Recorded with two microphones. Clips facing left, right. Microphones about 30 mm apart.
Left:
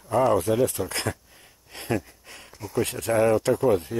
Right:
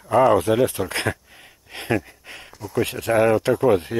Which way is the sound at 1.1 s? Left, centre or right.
Right.